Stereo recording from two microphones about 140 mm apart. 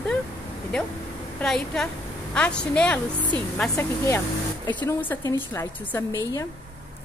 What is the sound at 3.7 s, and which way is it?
A woman's voice, 20° left (ahead or behind).